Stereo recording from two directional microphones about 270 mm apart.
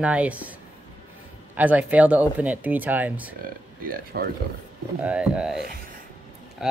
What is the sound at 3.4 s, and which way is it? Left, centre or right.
Speech, right.